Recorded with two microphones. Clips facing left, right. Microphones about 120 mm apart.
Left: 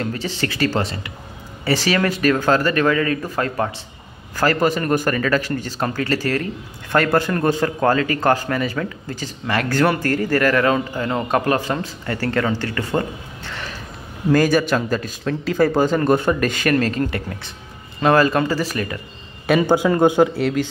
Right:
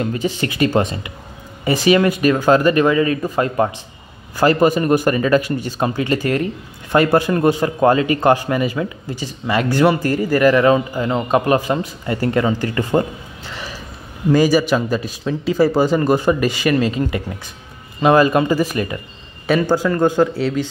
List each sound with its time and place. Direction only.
0.0 s a man's voice: 15° right (ahead or behind)
13.5 s a sound: 5° right (ahead or behind)
14.3 s a man's voice: 5° right (ahead or behind)
19.6 s speech: 15° left (ahead or behind)
20.3 s speech: centre (ahead or behind)